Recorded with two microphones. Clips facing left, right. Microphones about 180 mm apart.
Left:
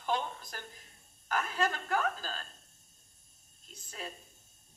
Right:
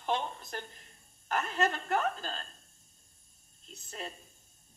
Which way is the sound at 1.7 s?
25° right (ahead or behind).